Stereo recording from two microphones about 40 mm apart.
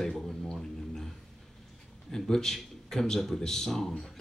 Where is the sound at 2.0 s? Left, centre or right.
Centre.